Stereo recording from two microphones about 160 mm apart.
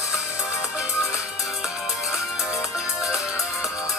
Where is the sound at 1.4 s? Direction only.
Centre (ahead or behind).